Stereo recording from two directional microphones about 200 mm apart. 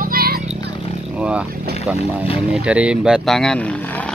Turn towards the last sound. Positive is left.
turn(degrees=5)  # may be behind; listen again after turning